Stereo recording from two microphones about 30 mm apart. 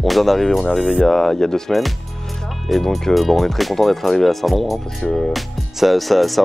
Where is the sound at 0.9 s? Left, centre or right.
Centre.